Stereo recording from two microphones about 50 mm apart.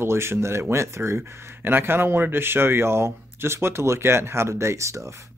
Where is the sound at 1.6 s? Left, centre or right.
Right.